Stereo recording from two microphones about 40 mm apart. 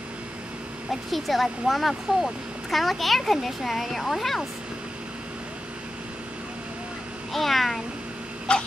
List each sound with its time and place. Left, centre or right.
1.1 s speech: centre
7.3 s speech: centre
8.5 s a sound: left